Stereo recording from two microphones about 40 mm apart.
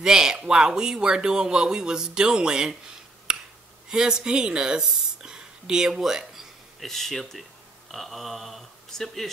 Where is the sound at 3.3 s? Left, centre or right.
Centre.